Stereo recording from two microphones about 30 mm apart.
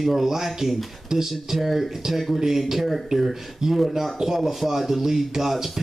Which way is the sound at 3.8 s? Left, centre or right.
Centre.